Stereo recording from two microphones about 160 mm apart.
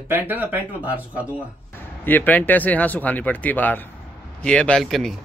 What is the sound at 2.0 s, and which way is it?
A man's voice, 10° left (ahead or behind).